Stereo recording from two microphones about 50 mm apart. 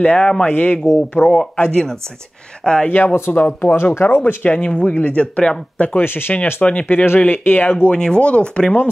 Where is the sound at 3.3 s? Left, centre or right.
Left.